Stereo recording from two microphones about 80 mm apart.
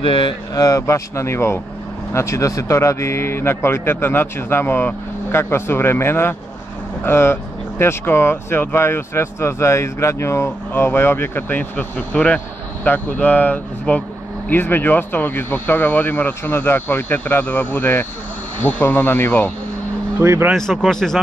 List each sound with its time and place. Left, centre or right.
0.0 s speech: left
0.6 s speech: left
20.2 s speech: right
20.5 s speech: centre